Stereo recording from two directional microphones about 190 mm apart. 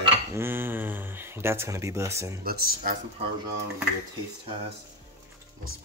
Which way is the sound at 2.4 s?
50° right (ahead or behind).